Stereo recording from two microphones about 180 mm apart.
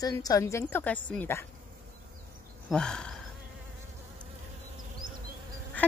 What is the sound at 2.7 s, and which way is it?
Speech, 5° left (ahead or behind).